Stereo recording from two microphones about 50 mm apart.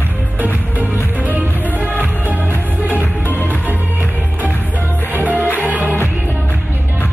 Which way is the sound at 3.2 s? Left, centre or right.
Left.